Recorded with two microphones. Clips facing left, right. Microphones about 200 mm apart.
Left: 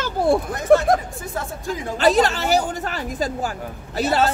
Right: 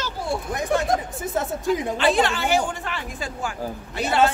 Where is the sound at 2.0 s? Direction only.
40° left (ahead or behind).